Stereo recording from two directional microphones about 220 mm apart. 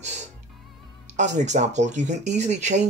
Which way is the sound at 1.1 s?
30° right (ahead or behind).